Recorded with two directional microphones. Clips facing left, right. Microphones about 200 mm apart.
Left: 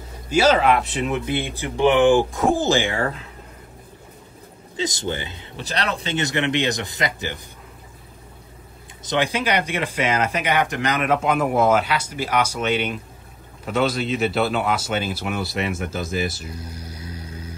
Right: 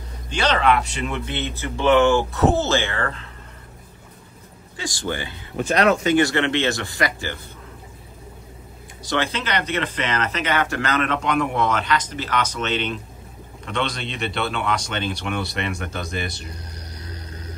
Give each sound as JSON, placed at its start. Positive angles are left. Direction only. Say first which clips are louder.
{"t": 0.3, "sound": "speech", "louder": "left 3 dB", "side_deg": 5}
{"t": 4.7, "sound": "speech", "louder": "left 2 dB", "side_deg": 20}
{"t": 5.6, "sound": "speech", "louder": "right 8 dB", "side_deg": 30}
{"t": 9.0, "sound": "speech", "louder": "left 2 dB", "side_deg": 15}